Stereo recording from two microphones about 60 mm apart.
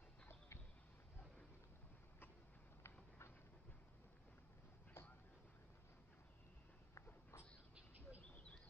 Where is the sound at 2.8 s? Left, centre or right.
Left.